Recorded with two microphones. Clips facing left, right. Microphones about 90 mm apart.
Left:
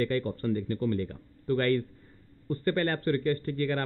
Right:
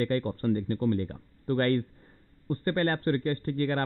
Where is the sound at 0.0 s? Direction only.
40° right (ahead or behind).